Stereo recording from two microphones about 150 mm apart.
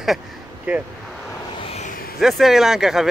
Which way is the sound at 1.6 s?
45° left (ahead or behind).